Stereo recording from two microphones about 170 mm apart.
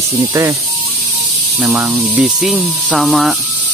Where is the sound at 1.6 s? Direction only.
5° right (ahead or behind).